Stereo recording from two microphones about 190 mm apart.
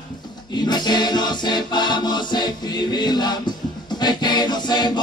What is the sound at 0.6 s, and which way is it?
Music, 20° left (ahead or behind).